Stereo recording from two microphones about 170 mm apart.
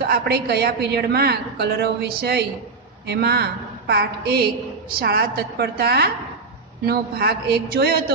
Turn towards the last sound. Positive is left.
turn(degrees=-65)  # may be behind; listen again after turning